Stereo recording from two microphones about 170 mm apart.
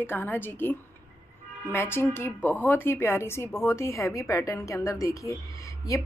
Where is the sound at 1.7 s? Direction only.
15° left (ahead or behind).